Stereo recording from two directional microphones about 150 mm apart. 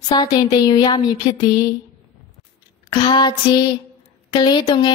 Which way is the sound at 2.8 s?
30° left (ahead or behind).